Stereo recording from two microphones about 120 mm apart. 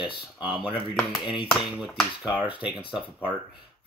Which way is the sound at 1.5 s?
Centre (ahead or behind).